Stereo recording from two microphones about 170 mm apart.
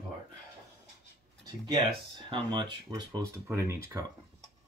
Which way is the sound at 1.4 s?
30° right (ahead or behind).